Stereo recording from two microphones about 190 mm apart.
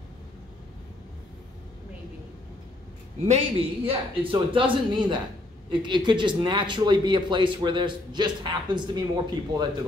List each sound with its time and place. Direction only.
3.3 s speech: 30° right (ahead or behind)